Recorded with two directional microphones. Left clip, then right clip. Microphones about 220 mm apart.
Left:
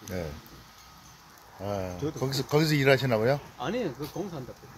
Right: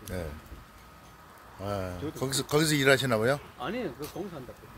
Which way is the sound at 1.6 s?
5° right (ahead or behind).